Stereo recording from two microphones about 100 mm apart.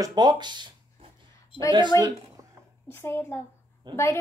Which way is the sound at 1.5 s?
65° left (ahead or behind).